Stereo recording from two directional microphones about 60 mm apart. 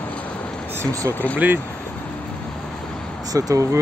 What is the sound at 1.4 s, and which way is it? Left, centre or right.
Speech, right.